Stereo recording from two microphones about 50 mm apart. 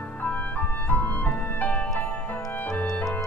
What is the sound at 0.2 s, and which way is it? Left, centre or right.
Music, left.